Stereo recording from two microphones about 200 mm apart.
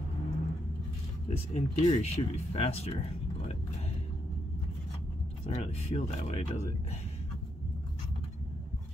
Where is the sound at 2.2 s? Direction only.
25° left (ahead or behind).